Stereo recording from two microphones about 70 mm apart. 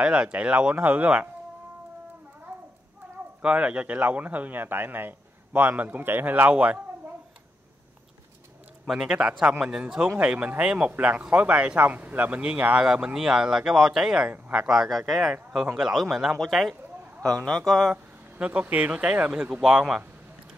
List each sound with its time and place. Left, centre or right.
0.0 s speech: centre
3.4 s speech: centre
8.8 s speech: centre
17.2 s a man's voice: centre
17.9 s speech: centre